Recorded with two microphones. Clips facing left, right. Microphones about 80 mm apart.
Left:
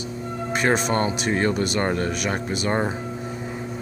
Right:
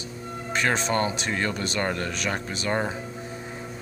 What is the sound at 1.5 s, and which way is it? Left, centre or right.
Speech, centre.